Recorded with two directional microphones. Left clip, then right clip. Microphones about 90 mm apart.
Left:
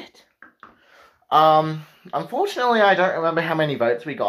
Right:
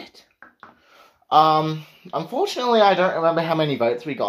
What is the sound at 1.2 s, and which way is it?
Speech, 15° right (ahead or behind).